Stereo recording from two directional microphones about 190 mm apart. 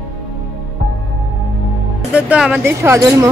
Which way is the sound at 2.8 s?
15° right (ahead or behind).